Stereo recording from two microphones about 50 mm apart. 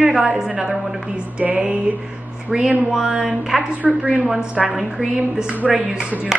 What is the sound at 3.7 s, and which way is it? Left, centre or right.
Speech, right.